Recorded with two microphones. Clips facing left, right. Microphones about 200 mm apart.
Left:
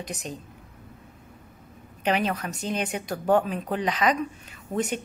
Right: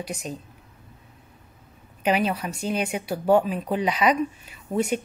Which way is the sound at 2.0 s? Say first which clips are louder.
Right 2 dB; 10° right (ahead or behind).